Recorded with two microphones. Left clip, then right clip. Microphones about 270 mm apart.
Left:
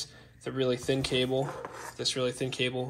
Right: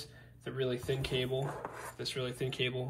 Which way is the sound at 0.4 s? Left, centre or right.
Left.